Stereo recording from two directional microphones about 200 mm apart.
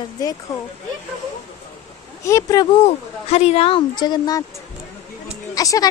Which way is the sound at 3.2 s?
30° left (ahead or behind).